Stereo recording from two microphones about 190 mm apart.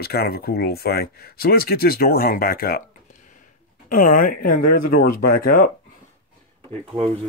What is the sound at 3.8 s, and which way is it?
Speech, 45° left (ahead or behind).